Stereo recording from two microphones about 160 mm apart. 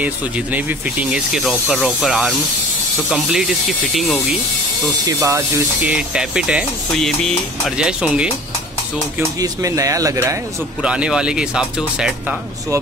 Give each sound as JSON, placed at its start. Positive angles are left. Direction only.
{"t": 0.0, "sound": "speech", "side_deg": -10}
{"t": 5.0, "sound": "speech", "side_deg": -20}
{"t": 5.9, "sound": "speech", "side_deg": -5}
{"t": 9.4, "sound": "speech", "side_deg": -20}
{"t": 10.8, "sound": "speech", "side_deg": -5}